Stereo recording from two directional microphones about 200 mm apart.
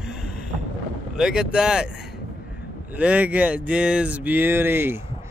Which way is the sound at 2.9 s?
5° right (ahead or behind).